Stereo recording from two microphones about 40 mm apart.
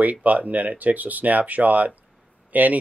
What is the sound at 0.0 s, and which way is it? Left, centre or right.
Speech, right.